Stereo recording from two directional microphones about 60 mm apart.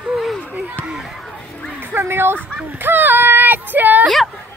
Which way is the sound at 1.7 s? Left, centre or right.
Right.